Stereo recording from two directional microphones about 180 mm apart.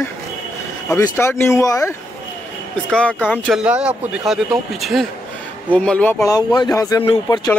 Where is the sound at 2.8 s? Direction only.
5° left (ahead or behind).